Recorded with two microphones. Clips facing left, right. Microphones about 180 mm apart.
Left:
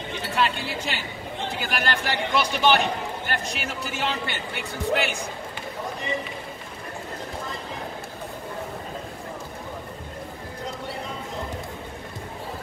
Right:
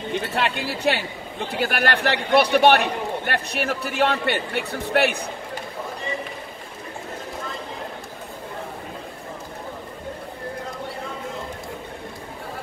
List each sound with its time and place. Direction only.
0.3 s a man's voice: 60° right (ahead or behind)